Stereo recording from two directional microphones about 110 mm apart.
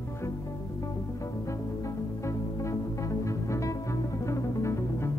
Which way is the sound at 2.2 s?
25° left (ahead or behind).